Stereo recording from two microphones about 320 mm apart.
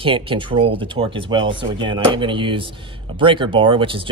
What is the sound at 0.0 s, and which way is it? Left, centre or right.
Speech, centre.